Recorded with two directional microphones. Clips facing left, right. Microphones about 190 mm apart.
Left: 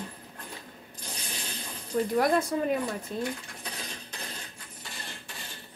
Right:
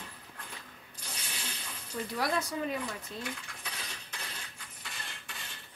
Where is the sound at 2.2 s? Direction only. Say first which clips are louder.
Left 6 dB; 50° left (ahead or behind).